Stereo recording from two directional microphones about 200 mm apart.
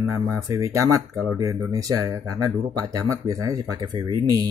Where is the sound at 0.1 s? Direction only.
15° right (ahead or behind).